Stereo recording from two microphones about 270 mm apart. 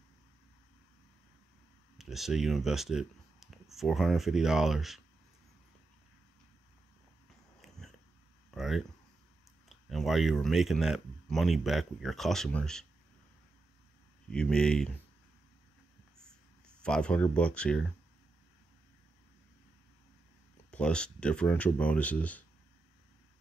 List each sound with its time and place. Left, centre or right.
2.0 s speech: centre
7.6 s a sound: centre
9.7 s speech: centre
14.3 s speech: centre
16.6 s speech: centre
20.7 s speech: centre